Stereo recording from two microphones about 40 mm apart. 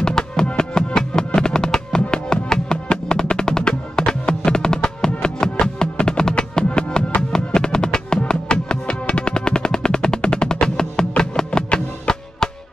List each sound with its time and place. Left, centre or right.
0.0 s music: centre